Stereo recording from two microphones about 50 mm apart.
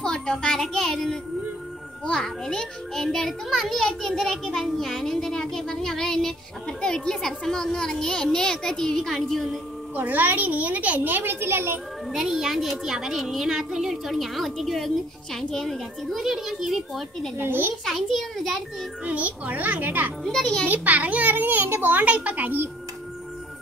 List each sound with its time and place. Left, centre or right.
0.0 s a child's voice: centre
9.9 s a child's voice: right
12.1 s a child's voice: centre
17.4 s a child's voice: right
17.8 s a woman's voice: centre
19.0 s a child's voice: right
20.2 s a child's voice: centre
20.6 s a child's voice: right
21.9 s a child's voice: right